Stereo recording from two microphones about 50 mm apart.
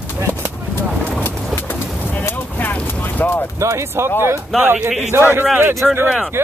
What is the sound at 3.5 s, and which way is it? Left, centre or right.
Speech, right.